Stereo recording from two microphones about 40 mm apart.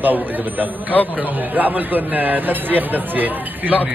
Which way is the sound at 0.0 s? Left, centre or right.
Right.